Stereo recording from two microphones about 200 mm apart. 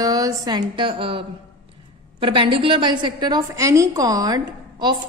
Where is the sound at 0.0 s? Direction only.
20° right (ahead or behind).